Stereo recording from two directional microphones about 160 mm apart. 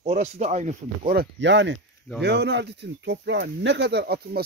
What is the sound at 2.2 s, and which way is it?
Speech, 90° right.